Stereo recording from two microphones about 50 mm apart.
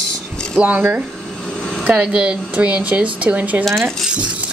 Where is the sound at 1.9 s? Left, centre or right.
Centre.